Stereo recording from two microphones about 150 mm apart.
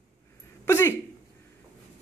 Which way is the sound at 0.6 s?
15° left (ahead or behind).